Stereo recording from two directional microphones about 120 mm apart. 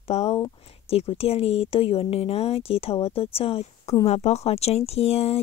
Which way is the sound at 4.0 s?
60° left (ahead or behind).